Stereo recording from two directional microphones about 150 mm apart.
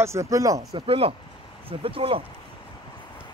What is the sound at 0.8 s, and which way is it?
Speech, 40° right (ahead or behind).